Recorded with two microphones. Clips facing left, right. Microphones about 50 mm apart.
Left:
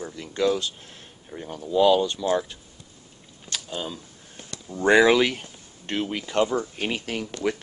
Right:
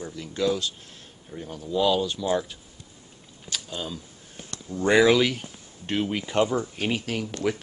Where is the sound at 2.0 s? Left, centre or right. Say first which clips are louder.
Left 2 dB; centre.